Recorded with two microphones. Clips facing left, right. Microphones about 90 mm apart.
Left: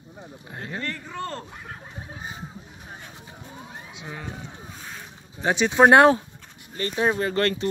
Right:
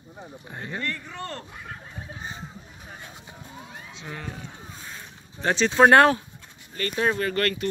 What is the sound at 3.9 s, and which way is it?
Speech, 10° left (ahead or behind).